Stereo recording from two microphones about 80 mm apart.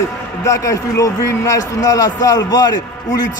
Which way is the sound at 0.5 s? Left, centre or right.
Left.